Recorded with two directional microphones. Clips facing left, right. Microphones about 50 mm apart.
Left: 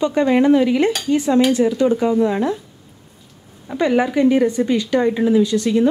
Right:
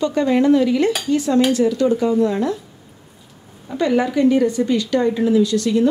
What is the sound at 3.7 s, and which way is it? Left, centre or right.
A woman's voice, left.